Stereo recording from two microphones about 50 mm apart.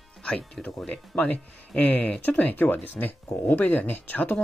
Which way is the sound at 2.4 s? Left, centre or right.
Left.